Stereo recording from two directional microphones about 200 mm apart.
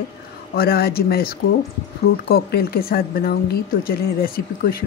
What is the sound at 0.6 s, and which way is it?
Speech, 50° left (ahead or behind).